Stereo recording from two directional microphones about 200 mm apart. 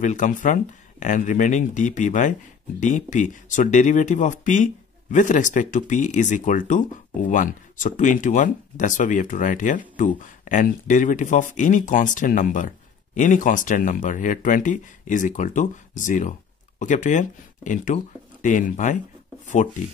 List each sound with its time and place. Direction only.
0.0 s speech: 40° left (ahead or behind)